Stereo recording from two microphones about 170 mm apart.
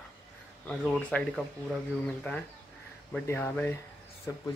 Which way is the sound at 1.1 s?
10° left (ahead or behind).